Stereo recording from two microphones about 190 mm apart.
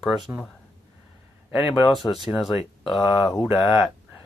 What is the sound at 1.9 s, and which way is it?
Speech, centre (ahead or behind).